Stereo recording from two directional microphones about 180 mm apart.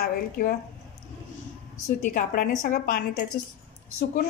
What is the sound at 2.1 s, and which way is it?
A woman's voice, 50° left (ahead or behind).